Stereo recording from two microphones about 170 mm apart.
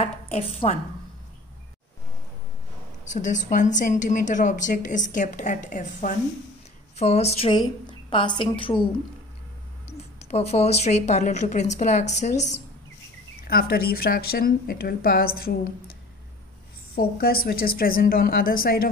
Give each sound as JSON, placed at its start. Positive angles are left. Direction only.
{"t": 0.0, "sound": "a woman's voice", "side_deg": 35}
{"t": 3.1, "sound": "a woman's voice", "side_deg": 45}
{"t": 9.9, "sound": "speech", "side_deg": 40}
{"t": 13.4, "sound": "speech", "side_deg": 60}